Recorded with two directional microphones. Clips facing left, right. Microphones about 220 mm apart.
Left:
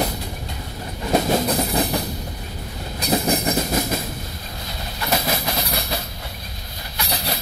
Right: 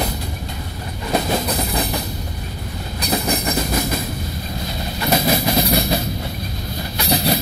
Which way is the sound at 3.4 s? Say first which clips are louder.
Even; 25° left (ahead or behind).